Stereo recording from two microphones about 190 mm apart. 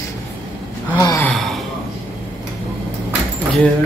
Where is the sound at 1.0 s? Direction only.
15° left (ahead or behind).